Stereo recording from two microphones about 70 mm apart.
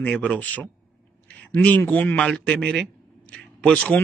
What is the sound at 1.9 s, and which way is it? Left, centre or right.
Speech, left.